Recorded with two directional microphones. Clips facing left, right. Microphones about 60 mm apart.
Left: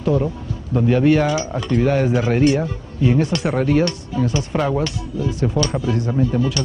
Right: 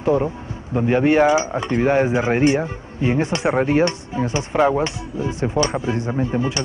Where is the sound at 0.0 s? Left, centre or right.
Right.